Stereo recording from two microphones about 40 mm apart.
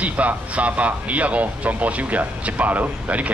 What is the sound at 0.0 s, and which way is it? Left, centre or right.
Speech, right.